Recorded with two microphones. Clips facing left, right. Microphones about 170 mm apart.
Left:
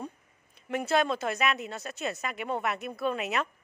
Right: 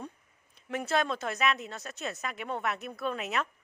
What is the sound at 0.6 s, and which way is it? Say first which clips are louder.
A woman's voice: left 3 dB; centre (ahead or behind).